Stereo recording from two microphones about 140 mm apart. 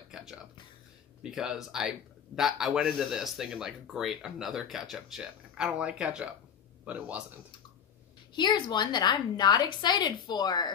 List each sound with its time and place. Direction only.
0.1 s music: 5° right (ahead or behind)
1.2 s speech: 5° right (ahead or behind)
8.4 s a woman's voice: 30° left (ahead or behind)